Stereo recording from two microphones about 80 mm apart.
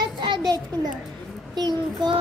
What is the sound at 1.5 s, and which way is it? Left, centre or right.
Child singing, right.